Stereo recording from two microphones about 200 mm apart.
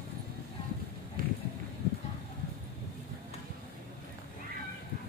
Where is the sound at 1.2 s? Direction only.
45° right (ahead or behind).